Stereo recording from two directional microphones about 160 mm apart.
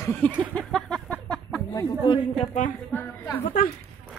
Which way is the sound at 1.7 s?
30° left (ahead or behind).